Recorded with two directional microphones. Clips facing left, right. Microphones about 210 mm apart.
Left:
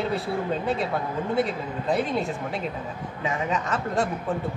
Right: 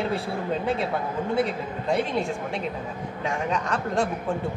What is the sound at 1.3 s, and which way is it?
A woman's voice, centre (ahead or behind).